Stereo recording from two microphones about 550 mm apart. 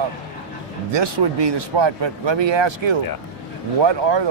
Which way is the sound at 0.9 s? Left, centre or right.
Right.